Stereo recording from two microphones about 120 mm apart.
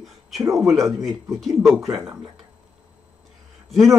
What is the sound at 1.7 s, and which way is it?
Speech, 25° right (ahead or behind).